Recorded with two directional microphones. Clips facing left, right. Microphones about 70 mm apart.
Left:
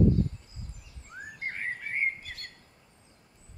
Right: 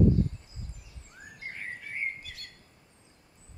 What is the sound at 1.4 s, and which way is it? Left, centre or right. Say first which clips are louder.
Chirp: left 5 dB; left.